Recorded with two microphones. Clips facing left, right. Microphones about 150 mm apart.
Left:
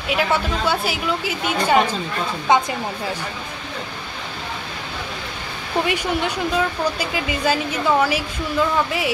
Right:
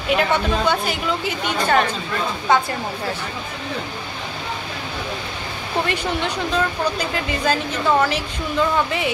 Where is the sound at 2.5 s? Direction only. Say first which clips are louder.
Left 1 dB; 20° left (ahead or behind).